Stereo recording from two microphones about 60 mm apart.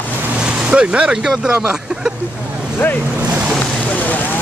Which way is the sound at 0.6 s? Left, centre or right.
Centre.